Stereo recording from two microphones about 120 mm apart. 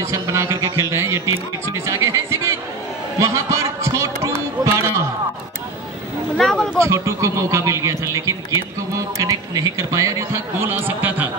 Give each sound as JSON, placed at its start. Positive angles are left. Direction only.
{"t": 0.0, "sound": "a man's voice", "side_deg": -25}
{"t": 3.2, "sound": "a sound", "side_deg": -25}
{"t": 6.3, "sound": "speech", "side_deg": 5}
{"t": 6.8, "sound": "a man's voice", "side_deg": -25}